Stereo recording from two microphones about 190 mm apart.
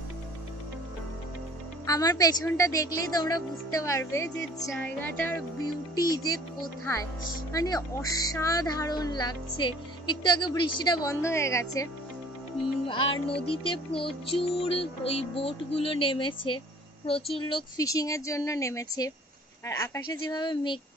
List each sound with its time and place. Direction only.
1.9 s speech: 20° left (ahead or behind)
7.5 s speech: 20° left (ahead or behind)
12.8 s music: 25° left (ahead or behind)
13.5 s speech: 30° left (ahead or behind)